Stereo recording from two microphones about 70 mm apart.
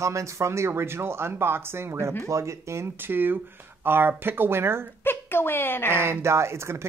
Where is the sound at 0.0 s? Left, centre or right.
Right.